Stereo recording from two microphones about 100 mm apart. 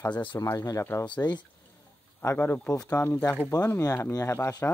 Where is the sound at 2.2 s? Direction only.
20° left (ahead or behind).